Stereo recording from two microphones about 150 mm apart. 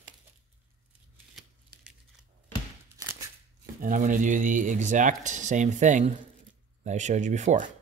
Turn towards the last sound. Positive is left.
turn(degrees=-55)  # may be behind; listen again after turning